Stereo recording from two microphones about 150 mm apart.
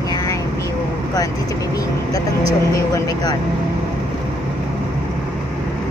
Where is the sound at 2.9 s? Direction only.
25° left (ahead or behind).